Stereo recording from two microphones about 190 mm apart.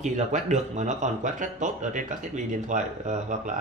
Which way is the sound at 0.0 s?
40° right (ahead or behind).